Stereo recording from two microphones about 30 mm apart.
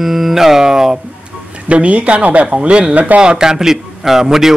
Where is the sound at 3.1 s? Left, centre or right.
Right.